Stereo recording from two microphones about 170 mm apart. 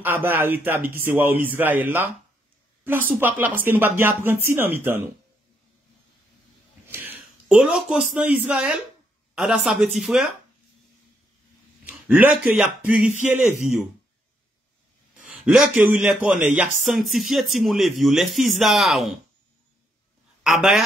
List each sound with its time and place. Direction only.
0.0 s speech: 10° right (ahead or behind)
6.9 s a sound: 10° right (ahead or behind)
8.1 s a woman's voice: 5° right (ahead or behind)
11.8 s speech: 10° right (ahead or behind)
15.2 s a man's voice: 5° right (ahead or behind)
20.4 s a woman's voice: centre (ahead or behind)